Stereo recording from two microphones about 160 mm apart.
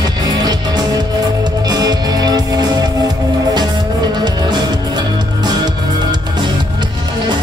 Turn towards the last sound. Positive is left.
turn(degrees=-25)  # may be behind; listen again after turning